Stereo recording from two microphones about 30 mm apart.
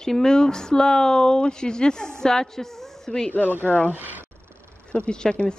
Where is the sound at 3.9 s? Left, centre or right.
Right.